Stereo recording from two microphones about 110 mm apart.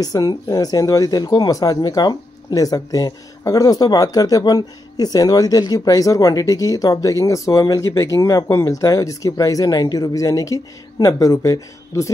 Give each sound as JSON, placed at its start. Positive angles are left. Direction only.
{"t": 0.0, "sound": "speech", "side_deg": 35}